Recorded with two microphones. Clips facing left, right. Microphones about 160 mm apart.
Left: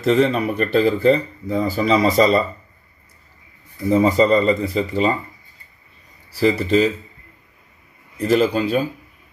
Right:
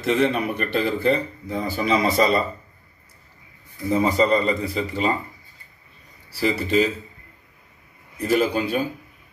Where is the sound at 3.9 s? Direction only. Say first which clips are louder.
Left 4 dB; 35° left (ahead or behind).